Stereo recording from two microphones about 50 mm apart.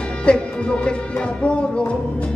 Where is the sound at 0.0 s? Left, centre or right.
Left.